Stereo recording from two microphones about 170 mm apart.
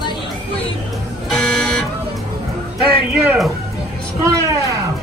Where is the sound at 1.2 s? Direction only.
Centre (ahead or behind).